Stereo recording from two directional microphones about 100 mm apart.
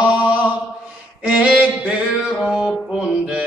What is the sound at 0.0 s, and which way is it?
Chant, 15° right (ahead or behind).